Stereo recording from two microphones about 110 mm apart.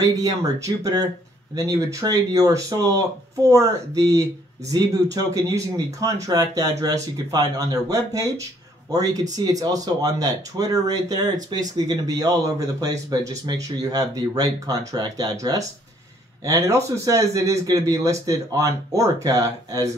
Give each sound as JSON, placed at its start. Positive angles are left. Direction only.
{"t": 0.0, "sound": "speech", "side_deg": -35}